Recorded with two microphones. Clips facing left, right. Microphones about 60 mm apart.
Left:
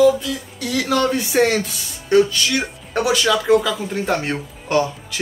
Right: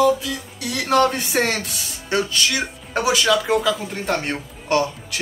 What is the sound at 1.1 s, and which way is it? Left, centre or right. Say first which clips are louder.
Speech: left 4 dB; right.